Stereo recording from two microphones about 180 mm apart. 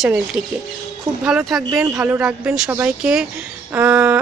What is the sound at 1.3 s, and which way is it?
Speech, centre (ahead or behind).